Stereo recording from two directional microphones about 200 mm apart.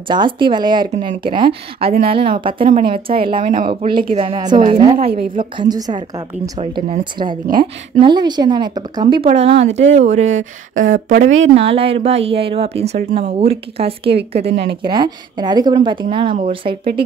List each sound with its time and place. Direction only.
0.1 s a woman's voice: 25° right (ahead or behind); by 11.2 s 45° right (ahead or behind)
11.2 s speech: 70° right (ahead or behind)
11.5 s a woman's voice: 30° right (ahead or behind)
14.4 s speech: 55° right (ahead or behind)
14.9 s a woman's voice: 20° right (ahead or behind)